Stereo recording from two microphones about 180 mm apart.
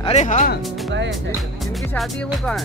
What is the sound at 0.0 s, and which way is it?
Speech, 40° left (ahead or behind).